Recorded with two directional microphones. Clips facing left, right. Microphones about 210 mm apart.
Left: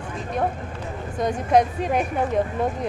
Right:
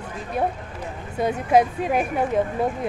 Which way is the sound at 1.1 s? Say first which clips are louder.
Right 1 dB; 5° right (ahead or behind).